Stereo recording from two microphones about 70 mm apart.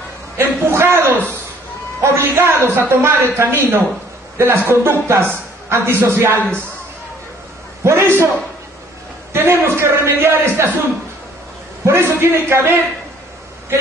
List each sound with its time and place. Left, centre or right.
0.4 s a sound: right
2.0 s a woman's voice: right
7.8 s speech: right
9.3 s speech: right
11.8 s speech: right